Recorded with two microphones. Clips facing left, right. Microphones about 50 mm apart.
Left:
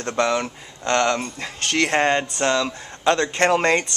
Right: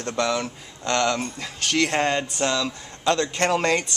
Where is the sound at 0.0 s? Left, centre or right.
Centre.